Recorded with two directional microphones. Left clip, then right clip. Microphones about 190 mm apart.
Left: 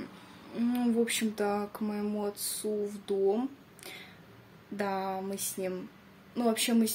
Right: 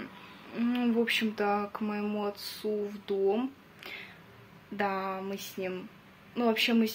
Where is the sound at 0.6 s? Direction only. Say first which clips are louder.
Even; 15° left (ahead or behind).